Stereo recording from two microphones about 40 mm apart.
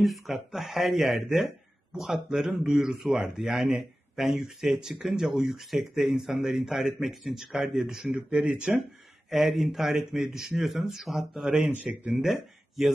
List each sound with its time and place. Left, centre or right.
0.0 s a man's voice: centre
4.7 s speech: centre
5.2 s a man's voice: centre
8.3 s speech: right
9.3 s a man's voice: centre
11.8 s speech: right
12.1 s speech: centre